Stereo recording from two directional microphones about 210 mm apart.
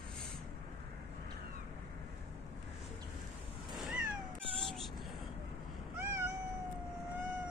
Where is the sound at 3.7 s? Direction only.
Centre (ahead or behind).